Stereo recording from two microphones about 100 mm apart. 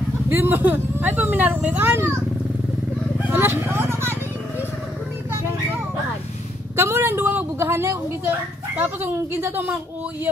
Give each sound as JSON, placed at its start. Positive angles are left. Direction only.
{"t": 0.3, "sound": "speech", "side_deg": -25}
{"t": 3.3, "sound": "vehicle", "side_deg": -20}
{"t": 6.8, "sound": "speech", "side_deg": -30}